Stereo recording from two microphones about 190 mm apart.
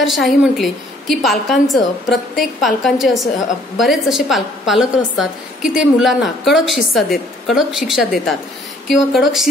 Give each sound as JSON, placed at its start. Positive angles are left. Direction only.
{"t": 0.0, "sound": "a woman's voice", "side_deg": 0}